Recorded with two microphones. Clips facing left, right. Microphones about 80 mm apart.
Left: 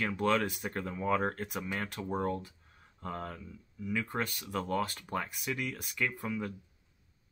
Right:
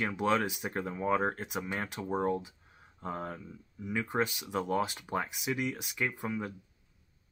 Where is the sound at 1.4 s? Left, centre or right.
Centre.